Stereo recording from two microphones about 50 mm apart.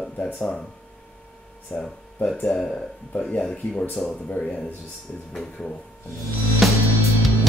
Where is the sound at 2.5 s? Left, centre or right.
Centre.